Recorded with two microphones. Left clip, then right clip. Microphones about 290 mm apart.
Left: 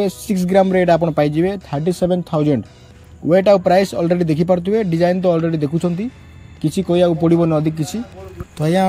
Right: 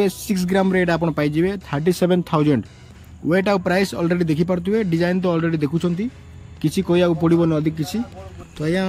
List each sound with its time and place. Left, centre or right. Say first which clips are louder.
0.0 s speech: left 1 dB; centre